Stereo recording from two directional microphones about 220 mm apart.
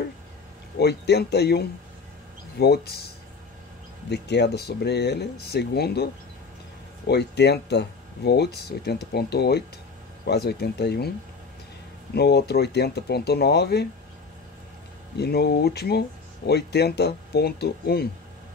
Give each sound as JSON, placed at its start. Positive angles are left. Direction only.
{"t": 0.7, "sound": "speech", "side_deg": 50}
{"t": 4.1, "sound": "speech", "side_deg": 50}
{"t": 7.1, "sound": "speech", "side_deg": 50}
{"t": 12.1, "sound": "speech", "side_deg": 50}
{"t": 15.1, "sound": "speech", "side_deg": 45}